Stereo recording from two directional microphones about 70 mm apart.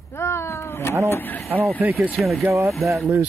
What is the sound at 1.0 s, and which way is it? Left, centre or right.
Speech, left.